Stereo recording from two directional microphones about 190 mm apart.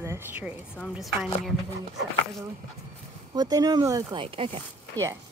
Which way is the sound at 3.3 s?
20° right (ahead or behind).